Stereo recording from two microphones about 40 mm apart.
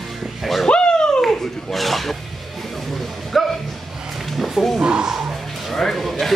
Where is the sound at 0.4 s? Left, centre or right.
Centre.